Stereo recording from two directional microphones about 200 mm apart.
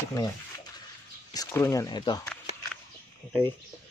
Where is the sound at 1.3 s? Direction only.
15° left (ahead or behind).